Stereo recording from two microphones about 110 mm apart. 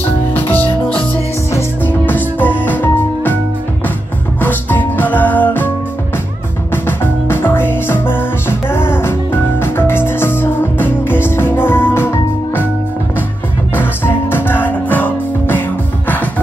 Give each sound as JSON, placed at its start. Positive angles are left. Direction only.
{"t": 0.3, "sound": "music", "side_deg": 15}
{"t": 4.4, "sound": "music", "side_deg": 15}
{"t": 6.7, "sound": "music", "side_deg": 20}
{"t": 13.7, "sound": "music", "side_deg": 20}